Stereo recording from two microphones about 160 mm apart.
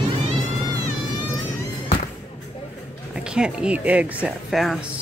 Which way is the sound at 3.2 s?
5° right (ahead or behind).